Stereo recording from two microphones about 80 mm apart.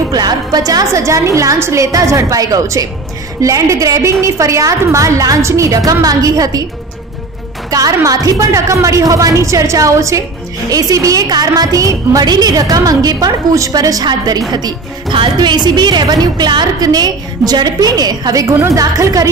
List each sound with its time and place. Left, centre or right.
0.1 s a woman's voice: right
7.7 s a woman's voice: right
12.3 s a woman's voice: right